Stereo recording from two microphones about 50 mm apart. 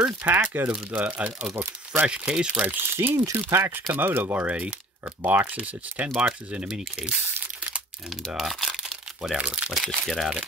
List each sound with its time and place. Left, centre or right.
0.2 s speech: right
0.9 s speech: right
2.6 s speech: right
3.3 s speech: right
3.9 s speech: right
6.6 s speech: centre
8.3 s speech: centre
9.4 s speech: right
9.8 s speech: centre